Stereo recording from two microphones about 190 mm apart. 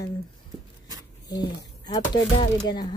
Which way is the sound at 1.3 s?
20° left (ahead or behind).